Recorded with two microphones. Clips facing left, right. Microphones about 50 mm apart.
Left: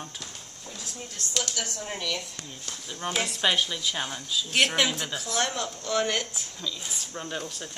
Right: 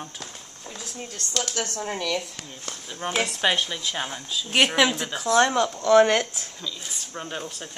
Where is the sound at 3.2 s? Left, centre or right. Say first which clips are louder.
Right 2 dB; centre.